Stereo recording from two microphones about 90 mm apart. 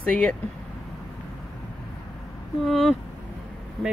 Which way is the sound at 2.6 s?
Centre (ahead or behind).